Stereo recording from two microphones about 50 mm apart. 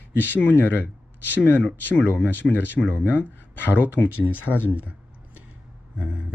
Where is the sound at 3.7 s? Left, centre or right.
Right.